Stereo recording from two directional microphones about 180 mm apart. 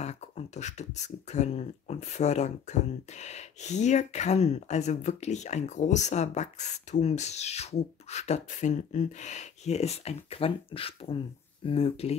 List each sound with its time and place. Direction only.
0.0 s speech: 40° left (ahead or behind)